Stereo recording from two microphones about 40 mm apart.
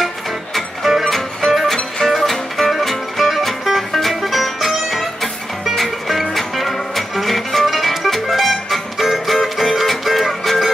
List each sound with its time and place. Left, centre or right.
1.0 s music: centre